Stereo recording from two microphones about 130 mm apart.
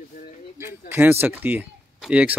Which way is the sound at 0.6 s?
15° right (ahead or behind).